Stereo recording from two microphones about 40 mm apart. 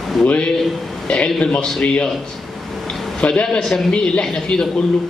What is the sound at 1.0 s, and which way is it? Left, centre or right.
Speech, left.